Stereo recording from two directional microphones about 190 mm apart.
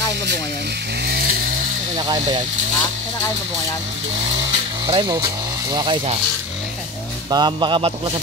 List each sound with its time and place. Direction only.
1.0 s vehicle: 55° right (ahead or behind)
4.8 s speech: 25° right (ahead or behind)
7.2 s speech: 20° right (ahead or behind)